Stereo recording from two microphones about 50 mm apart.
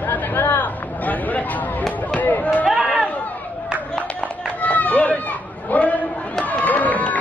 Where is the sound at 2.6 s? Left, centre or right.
Centre.